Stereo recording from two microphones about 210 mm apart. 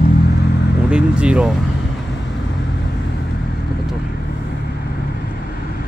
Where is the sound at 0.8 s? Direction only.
5° right (ahead or behind).